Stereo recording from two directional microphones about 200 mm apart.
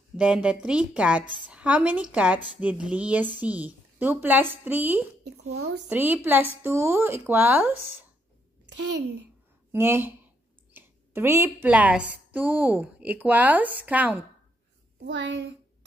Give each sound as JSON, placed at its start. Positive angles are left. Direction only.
{"t": 0.2, "sound": "a woman's voice", "side_deg": -5}
{"t": 9.7, "sound": "a woman's voice", "side_deg": -10}
{"t": 15.0, "sound": "a child's voice", "side_deg": -65}